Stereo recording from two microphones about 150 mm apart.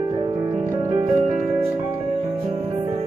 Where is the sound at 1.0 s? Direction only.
40° right (ahead or behind).